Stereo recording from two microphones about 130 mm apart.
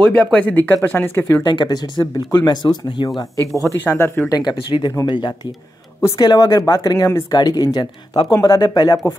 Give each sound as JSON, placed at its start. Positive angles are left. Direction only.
{"t": 0.0, "sound": "speech", "side_deg": 10}
{"t": 1.4, "sound": "speech", "side_deg": 35}
{"t": 3.8, "sound": "speech", "side_deg": 20}
{"t": 4.3, "sound": "speech", "side_deg": 35}